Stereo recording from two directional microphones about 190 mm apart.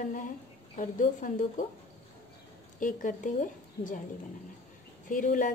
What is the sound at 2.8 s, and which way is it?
A woman's voice, 45° left (ahead or behind).